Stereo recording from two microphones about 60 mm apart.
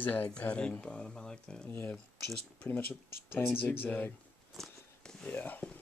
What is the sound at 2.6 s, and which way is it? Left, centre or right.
Speech, left.